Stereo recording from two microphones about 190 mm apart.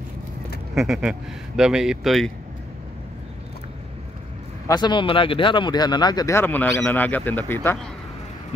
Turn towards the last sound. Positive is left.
turn(degrees=10)  # may be behind; listen again after turning